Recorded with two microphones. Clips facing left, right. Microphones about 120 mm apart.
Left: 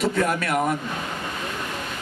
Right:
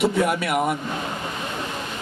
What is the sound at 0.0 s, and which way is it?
Speech, 10° right (ahead or behind).